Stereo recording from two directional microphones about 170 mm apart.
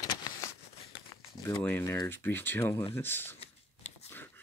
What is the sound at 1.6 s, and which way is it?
Speech, 10° left (ahead or behind).